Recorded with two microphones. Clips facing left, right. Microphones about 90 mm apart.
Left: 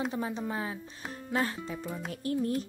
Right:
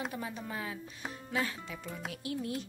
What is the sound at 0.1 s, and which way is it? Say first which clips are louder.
Music: left 6 dB; 25° left (ahead or behind).